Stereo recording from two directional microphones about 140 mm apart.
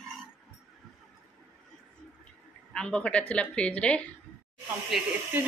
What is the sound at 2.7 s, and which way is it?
Speech, 5° left (ahead or behind).